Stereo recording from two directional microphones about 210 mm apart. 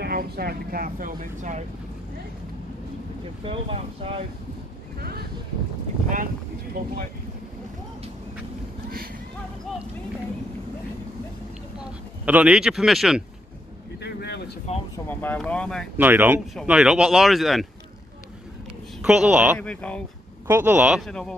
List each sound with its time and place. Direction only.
0.0 s speech: 45° right (ahead or behind)
3.4 s speech: 25° right (ahead or behind)
6.8 s speech: 45° right (ahead or behind)
12.3 s speech: 5° right (ahead or behind)
13.9 s a sound: 55° left (ahead or behind)
15.0 s speech: 5° left (ahead or behind)
16.0 s speech: 10° right (ahead or behind)
18.9 s speech: 5° right (ahead or behind)
19.6 s speech: 5° left (ahead or behind)
20.4 s speech: 10° right (ahead or behind)